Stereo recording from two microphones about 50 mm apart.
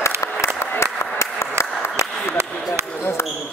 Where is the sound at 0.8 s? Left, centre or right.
Left.